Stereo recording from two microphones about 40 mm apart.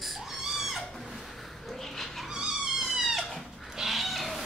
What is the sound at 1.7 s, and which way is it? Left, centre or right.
Cat, centre.